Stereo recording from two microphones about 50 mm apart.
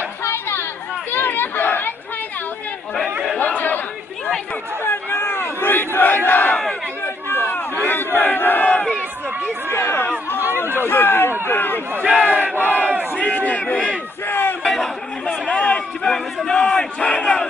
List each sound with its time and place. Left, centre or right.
0.2 s chatter: left
1.1 s chatter: left
3.3 s chatter: left
4.8 s battle cry: left
9.7 s chatter: left
10.9 s a sound: left
12.2 s battle cry: left
13.5 s a sound: left
14.6 s a sound: centre
15.4 s run: left
16.4 s battle cry: centre
17.0 s battle cry: left